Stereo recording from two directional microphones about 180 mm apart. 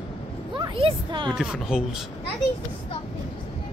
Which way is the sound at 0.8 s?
30° right (ahead or behind).